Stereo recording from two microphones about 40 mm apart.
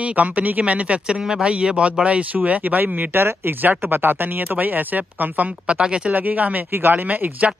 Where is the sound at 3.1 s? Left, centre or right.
Right.